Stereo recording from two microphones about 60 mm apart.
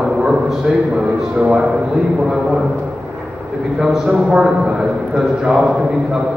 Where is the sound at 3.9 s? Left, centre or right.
Centre.